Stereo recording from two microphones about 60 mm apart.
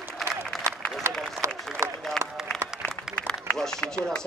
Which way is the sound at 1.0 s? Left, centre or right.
Right.